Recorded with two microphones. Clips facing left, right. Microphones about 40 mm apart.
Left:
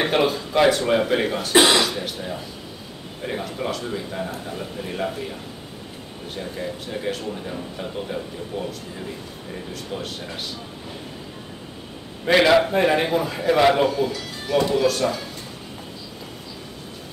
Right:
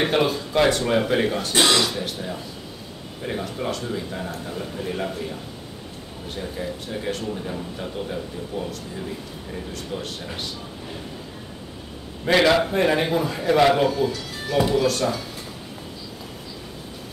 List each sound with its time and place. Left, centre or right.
0.0 s a man's voice: centre
1.5 s speech: centre
1.8 s a man's voice: centre
6.3 s a man's voice: centre
9.7 s a man's voice: centre
12.3 s a man's voice: centre